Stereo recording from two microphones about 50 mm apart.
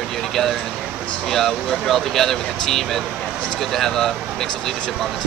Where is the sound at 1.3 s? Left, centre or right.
Centre.